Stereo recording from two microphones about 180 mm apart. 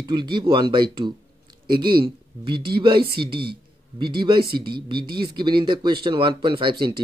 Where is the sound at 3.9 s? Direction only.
25° right (ahead or behind).